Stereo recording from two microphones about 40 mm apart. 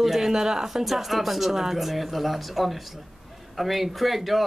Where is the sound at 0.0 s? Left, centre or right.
Centre.